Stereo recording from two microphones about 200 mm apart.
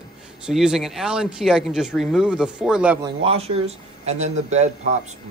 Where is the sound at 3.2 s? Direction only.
30° right (ahead or behind).